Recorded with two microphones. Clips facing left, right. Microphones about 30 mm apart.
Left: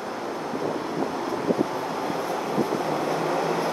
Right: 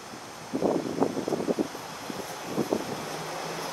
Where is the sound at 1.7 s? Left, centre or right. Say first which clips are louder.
Left 10 dB; left.